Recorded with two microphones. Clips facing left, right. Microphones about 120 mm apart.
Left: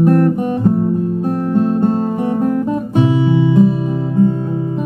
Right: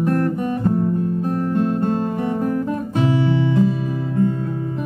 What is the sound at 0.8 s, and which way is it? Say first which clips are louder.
Music: left 4 dB; 20° left (ahead or behind).